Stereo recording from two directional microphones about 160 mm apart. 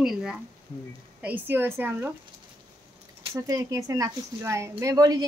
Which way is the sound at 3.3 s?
20° right (ahead or behind).